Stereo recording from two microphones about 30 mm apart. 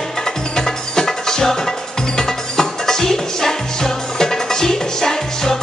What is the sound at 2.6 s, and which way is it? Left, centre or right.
Music, centre.